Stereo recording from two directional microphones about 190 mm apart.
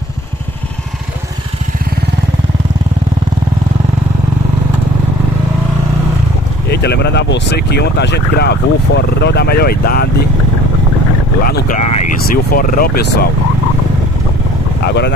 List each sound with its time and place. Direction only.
6.7 s speech: 60° left (ahead or behind)
11.4 s speech: 50° left (ahead or behind)
14.9 s speech: 60° left (ahead or behind)